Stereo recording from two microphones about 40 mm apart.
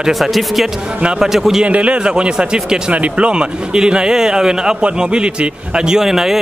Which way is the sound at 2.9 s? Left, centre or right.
Right.